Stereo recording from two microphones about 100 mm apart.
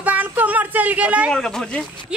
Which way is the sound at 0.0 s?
15° right (ahead or behind).